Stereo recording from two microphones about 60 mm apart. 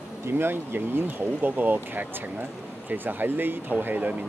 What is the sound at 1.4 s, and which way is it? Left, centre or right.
Speech, right.